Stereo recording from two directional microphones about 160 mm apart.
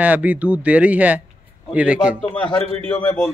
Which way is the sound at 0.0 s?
10° right (ahead or behind).